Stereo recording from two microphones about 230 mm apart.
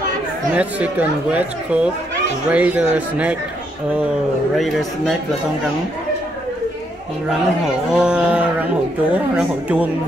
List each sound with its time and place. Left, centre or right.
0.6 s speech: centre
4.6 s speech: centre
7.2 s speech: centre